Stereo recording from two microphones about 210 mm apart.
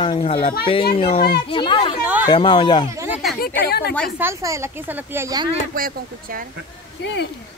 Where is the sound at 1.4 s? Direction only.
25° left (ahead or behind).